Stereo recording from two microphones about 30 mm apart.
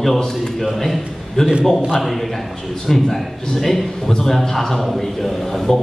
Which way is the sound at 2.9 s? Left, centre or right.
Centre.